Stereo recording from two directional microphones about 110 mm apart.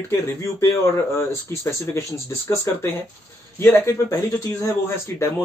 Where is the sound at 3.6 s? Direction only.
25° left (ahead or behind).